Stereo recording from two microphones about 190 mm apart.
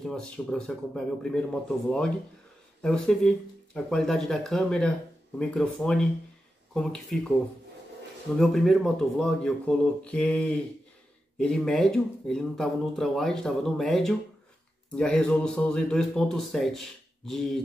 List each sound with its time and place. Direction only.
0.0 s speech: 5° left (ahead or behind)
8.4 s speech: centre (ahead or behind)